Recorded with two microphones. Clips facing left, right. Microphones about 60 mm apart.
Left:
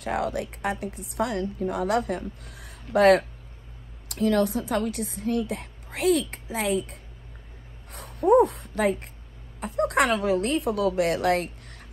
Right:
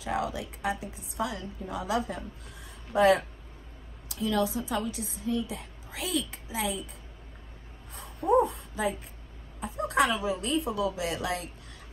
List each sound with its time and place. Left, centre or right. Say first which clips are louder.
0.0 s a woman's voice: left 4 dB; left
4.1 s a woman's voice: left 5 dB; left
7.9 s a sound: left 6 dB; left
8.5 s a woman's voice: left 6 dB; left